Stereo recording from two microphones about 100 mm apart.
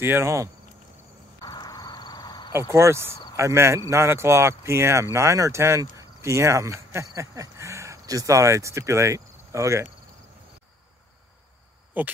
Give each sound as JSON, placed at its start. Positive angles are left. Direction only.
{"t": 0.0, "sound": "speech", "side_deg": -25}
{"t": 1.4, "sound": "a sound", "side_deg": 40}
{"t": 2.7, "sound": "speech", "side_deg": -30}
{"t": 11.9, "sound": "speech", "side_deg": -15}